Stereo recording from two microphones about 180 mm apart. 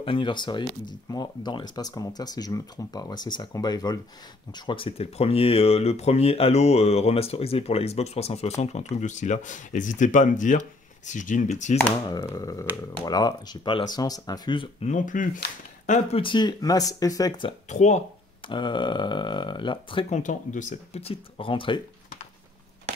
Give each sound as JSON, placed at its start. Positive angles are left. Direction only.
{"t": 0.0, "sound": "speech", "side_deg": 30}
{"t": 12.1, "sound": "speech", "side_deg": 20}
{"t": 14.9, "sound": "speech", "side_deg": 45}
{"t": 15.9, "sound": "speech", "side_deg": 30}
{"t": 17.6, "sound": "speech", "side_deg": 40}
{"t": 18.5, "sound": "speech", "side_deg": 25}
{"t": 20.2, "sound": "speech", "side_deg": 45}